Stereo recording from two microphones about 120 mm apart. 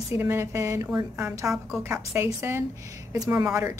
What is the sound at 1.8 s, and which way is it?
A woman's voice, 20° right (ahead or behind).